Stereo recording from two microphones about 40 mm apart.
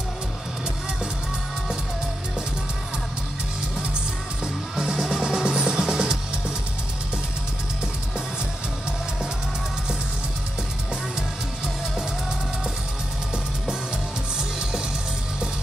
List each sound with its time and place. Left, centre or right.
4.7 s music: centre